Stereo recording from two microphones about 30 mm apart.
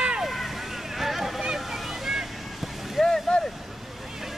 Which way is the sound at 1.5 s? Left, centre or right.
Centre.